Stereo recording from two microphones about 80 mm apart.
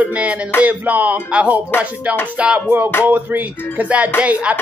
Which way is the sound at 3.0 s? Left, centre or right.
Centre.